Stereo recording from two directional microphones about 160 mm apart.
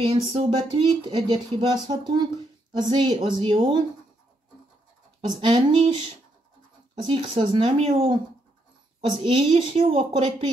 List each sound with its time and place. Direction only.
0.1 s speech: 35° right (ahead or behind)
5.4 s speech: 35° right (ahead or behind)
7.0 s speech: 30° right (ahead or behind)
9.2 s speech: 40° right (ahead or behind)